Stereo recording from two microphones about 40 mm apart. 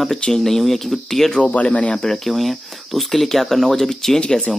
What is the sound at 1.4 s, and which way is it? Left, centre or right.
Speech, left.